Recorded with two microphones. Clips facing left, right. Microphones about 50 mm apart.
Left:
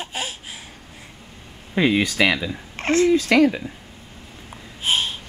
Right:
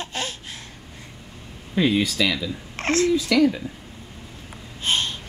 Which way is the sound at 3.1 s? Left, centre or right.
Left.